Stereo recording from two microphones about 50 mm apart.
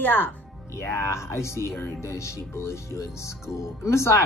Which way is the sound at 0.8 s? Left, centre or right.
Left.